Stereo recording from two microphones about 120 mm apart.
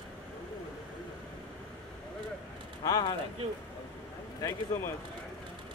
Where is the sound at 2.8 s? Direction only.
35° left (ahead or behind).